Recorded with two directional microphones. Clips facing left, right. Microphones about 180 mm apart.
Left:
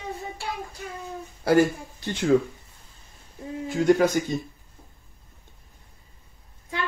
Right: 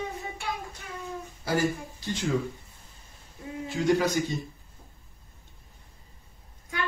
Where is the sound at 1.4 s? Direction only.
60° left (ahead or behind).